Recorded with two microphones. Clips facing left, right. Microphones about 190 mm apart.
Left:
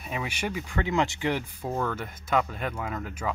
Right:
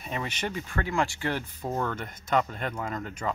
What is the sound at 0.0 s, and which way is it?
Speech, 5° left (ahead or behind).